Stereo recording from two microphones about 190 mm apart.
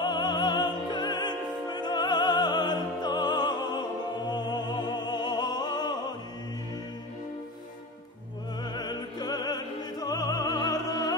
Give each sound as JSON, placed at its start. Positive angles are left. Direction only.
{"t": 0.0, "sound": "music", "side_deg": 20}
{"t": 8.6, "sound": "opera", "side_deg": 20}